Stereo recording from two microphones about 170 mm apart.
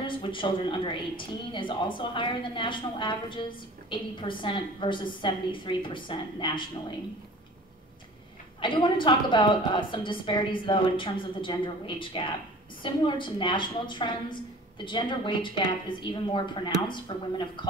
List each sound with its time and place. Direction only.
0.0 s speech: 30° left (ahead or behind)
8.5 s speech: 30° left (ahead or behind)